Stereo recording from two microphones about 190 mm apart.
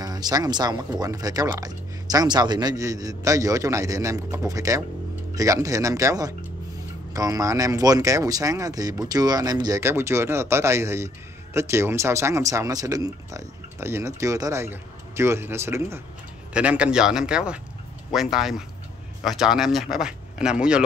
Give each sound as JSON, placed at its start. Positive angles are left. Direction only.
{"t": 0.0, "sound": "speech", "side_deg": -20}